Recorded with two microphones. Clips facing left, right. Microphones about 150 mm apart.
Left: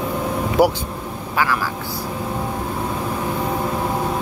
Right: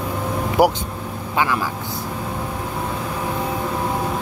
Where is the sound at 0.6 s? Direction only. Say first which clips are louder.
Even; 10° right (ahead or behind).